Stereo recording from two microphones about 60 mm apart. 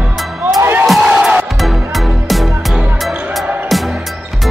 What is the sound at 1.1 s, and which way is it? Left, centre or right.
Music, centre.